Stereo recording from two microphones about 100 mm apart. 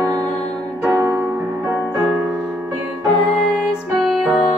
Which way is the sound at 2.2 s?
10° right (ahead or behind).